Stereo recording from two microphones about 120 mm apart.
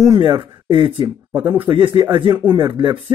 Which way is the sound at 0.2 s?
45° right (ahead or behind).